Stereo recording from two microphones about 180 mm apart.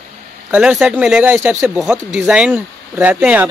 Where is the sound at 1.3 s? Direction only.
15° right (ahead or behind).